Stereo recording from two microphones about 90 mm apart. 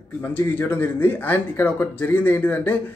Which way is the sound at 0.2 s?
20° left (ahead or behind).